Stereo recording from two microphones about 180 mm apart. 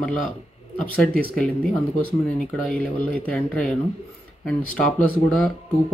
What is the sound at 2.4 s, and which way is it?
Speech, 5° left (ahead or behind).